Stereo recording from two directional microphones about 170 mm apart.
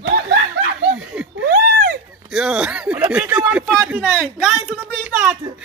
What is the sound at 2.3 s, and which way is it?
A man's voice, 5° right (ahead or behind).